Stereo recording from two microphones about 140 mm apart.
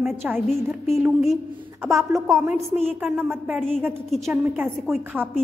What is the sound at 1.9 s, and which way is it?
A woman's voice, 20° right (ahead or behind).